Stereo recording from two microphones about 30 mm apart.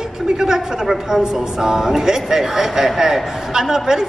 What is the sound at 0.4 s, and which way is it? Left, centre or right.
A woman's voice, centre.